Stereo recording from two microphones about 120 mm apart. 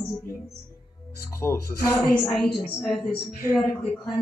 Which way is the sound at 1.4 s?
15° left (ahead or behind).